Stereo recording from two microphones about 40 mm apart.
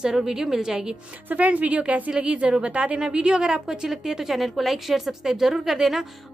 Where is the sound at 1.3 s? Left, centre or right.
Right.